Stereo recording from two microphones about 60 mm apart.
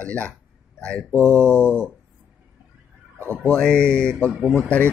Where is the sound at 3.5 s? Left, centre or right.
Centre.